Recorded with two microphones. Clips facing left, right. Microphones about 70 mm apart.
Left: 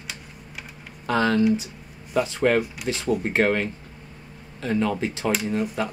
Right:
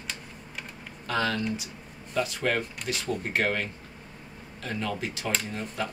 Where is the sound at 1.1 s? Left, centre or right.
Left.